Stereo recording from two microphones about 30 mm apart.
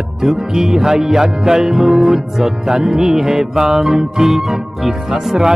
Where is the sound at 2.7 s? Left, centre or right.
Right.